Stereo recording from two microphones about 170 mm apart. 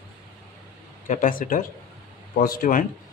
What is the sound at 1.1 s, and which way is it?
Speech, 50° left (ahead or behind).